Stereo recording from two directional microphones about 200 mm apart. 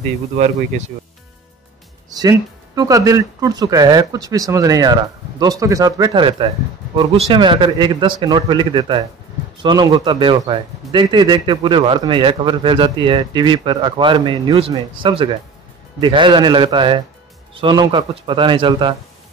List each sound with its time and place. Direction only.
2.0 s a man's voice: 20° right (ahead or behind)